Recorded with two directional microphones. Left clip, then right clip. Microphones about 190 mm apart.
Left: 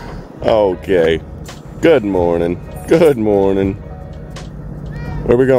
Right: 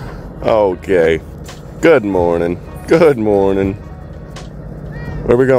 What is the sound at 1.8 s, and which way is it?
Speech, 5° left (ahead or behind).